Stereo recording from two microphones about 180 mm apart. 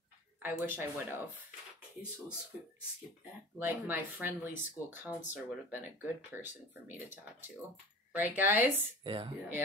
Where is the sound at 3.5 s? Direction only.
10° right (ahead or behind).